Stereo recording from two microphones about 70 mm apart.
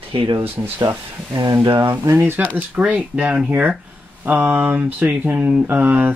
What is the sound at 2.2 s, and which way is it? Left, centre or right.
Speech, right.